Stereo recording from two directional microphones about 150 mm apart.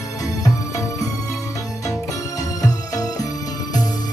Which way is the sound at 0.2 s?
20° left (ahead or behind).